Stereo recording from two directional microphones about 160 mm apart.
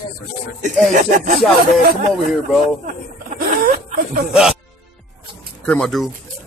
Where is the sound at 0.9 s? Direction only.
60° right (ahead or behind).